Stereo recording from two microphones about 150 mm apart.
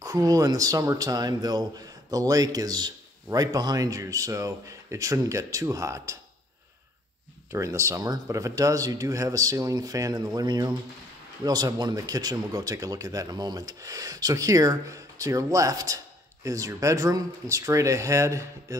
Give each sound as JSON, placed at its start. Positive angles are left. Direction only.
{"t": 0.0, "sound": "speech", "side_deg": -25}
{"t": 7.5, "sound": "speech", "side_deg": -20}